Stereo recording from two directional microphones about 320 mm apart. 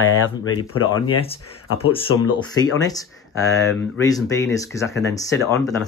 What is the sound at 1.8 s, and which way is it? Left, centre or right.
Speech, centre.